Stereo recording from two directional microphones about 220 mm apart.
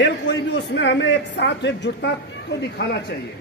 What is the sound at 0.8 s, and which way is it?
A woman's voice, 55° left (ahead or behind).